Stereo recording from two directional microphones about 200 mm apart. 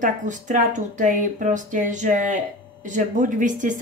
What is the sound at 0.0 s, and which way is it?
Speech, 40° right (ahead or behind).